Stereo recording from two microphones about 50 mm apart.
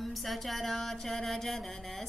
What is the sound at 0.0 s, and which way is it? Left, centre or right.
Female singing, centre.